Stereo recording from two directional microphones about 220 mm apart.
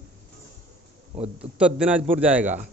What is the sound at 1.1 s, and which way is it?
Speech, 30° right (ahead or behind).